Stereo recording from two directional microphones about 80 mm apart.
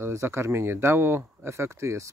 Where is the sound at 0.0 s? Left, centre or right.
Right.